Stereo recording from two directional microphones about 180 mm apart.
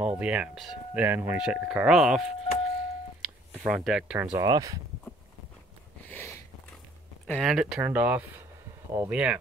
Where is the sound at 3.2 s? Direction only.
5° right (ahead or behind).